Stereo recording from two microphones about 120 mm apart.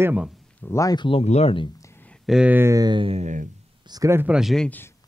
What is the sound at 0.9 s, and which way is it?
Speech, 45° left (ahead or behind).